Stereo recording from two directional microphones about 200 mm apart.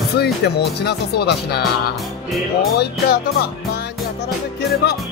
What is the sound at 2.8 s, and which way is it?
Speech, 50° left (ahead or behind).